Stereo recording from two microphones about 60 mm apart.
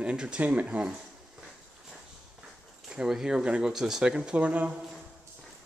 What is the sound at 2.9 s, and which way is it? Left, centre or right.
Speech, centre.